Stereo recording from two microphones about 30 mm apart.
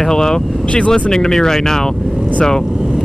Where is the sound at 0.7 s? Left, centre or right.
Left.